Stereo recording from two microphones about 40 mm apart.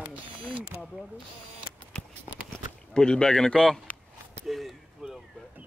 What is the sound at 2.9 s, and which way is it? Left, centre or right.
A man's voice, left.